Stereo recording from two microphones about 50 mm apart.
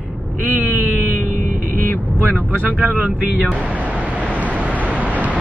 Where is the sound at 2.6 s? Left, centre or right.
Right.